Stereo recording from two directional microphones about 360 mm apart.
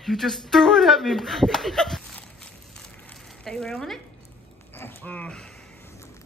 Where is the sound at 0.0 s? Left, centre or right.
Centre.